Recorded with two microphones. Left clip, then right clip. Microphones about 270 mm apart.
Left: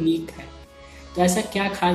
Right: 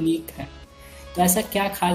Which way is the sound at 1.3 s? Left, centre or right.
Right.